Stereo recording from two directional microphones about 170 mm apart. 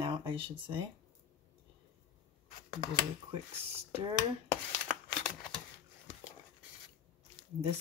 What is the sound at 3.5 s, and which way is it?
Speech, 35° right (ahead or behind).